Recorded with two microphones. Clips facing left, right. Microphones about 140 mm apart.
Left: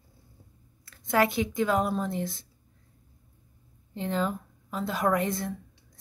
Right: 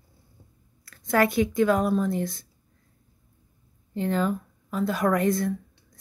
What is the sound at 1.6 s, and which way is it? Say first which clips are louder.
Speech: right 4 dB; 20° left (ahead or behind).